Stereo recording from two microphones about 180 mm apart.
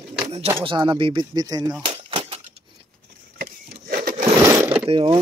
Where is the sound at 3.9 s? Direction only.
50° right (ahead or behind).